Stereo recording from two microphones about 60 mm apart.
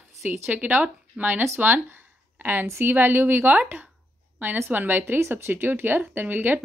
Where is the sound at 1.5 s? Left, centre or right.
Right.